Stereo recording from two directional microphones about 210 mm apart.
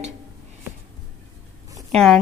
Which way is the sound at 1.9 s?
Centre (ahead or behind).